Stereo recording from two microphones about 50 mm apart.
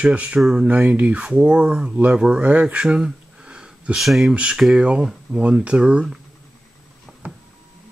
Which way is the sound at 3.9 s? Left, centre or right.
Centre.